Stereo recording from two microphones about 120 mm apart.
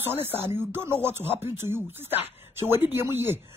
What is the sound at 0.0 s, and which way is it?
A woman's voice, 20° right (ahead or behind).